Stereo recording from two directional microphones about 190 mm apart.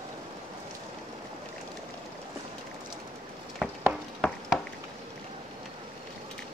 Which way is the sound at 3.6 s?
5° right (ahead or behind).